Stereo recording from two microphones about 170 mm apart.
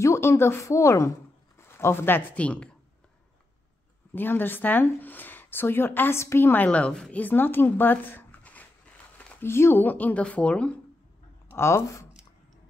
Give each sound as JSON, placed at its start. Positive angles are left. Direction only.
{"t": 0.0, "sound": "speech", "side_deg": 15}
{"t": 4.1, "sound": "speech", "side_deg": 10}